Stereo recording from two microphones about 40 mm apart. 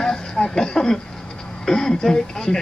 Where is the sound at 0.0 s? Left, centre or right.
Centre.